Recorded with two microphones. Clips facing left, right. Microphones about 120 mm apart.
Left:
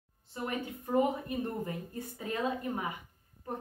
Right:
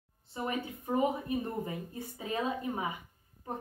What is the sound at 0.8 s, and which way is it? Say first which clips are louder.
A woman's voice: left 1 dB; 20° right (ahead or behind).